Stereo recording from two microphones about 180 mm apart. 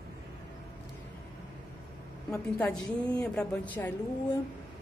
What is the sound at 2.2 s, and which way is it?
A woman's voice, 10° left (ahead or behind).